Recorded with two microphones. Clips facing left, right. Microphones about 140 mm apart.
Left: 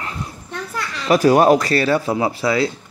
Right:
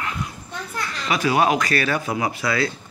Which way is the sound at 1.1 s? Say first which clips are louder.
Left 7 dB; 40° left (ahead or behind).